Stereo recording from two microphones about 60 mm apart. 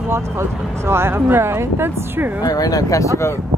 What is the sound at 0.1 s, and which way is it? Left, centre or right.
Speech, right.